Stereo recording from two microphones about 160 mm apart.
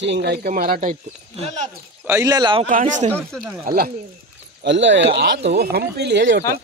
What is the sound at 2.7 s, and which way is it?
Speech, 55° right (ahead or behind).